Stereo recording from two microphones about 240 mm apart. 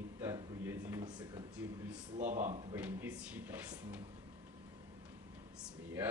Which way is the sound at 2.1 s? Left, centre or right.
Right.